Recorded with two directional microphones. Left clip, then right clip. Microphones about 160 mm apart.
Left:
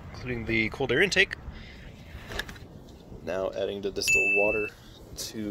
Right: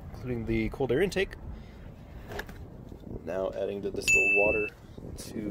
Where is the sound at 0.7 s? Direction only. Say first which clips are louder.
Left 4 dB; 25° right (ahead or behind).